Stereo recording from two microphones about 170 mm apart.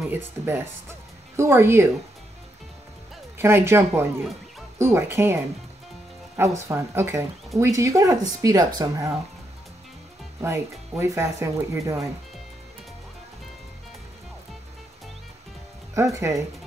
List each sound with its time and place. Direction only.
1.3 s speech: 15° right (ahead or behind)
3.3 s speech: 15° right (ahead or behind)
10.4 s speech: 15° right (ahead or behind)
15.9 s speech: 15° right (ahead or behind)